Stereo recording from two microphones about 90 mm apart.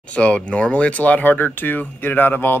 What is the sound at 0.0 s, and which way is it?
Speech, 15° left (ahead or behind).